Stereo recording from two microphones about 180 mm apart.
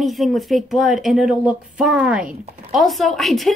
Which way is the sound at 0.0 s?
Centre (ahead or behind).